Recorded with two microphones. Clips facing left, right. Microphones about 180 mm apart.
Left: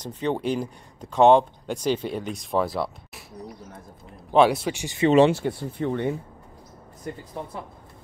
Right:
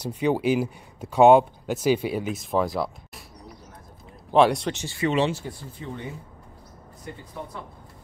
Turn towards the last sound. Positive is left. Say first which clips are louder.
# left 5 dB
turn(degrees=45)  # may be behind; listen again after turning